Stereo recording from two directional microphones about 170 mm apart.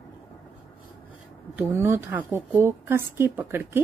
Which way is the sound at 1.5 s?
15° right (ahead or behind).